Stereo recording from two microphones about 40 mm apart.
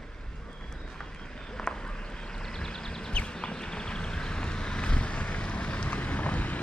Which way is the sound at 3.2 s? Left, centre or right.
Left.